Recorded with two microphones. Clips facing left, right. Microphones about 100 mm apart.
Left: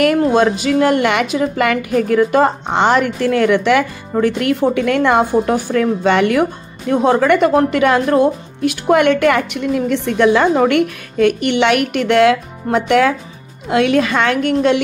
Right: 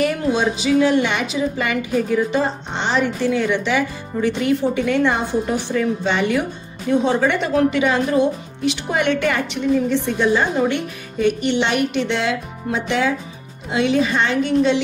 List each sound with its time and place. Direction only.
0.2 s a woman's voice: 50° left (ahead or behind)